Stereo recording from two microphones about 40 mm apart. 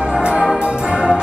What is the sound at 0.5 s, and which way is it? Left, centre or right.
Music, right.